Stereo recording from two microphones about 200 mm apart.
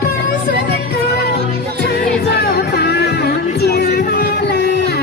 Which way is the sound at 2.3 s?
55° left (ahead or behind).